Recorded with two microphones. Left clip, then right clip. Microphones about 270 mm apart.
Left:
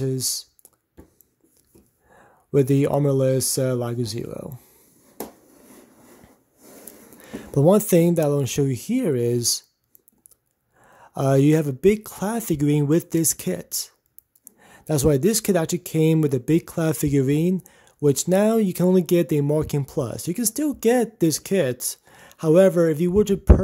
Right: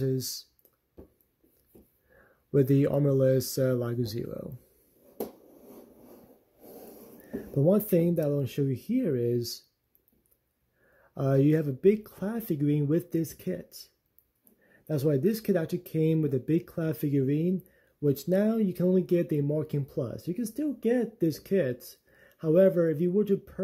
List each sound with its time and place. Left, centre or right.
0.0 s speech: centre
2.1 s speech: centre
7.6 s speech: left
11.0 s speech: centre